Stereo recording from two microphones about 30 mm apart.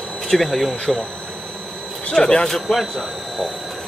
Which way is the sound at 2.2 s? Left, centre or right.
Centre.